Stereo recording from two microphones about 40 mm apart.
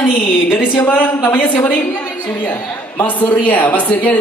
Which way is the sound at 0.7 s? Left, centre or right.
Left.